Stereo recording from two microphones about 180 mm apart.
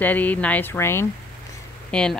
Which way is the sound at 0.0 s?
10° left (ahead or behind).